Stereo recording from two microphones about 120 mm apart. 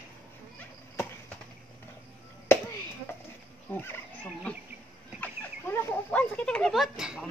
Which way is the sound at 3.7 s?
15° left (ahead or behind).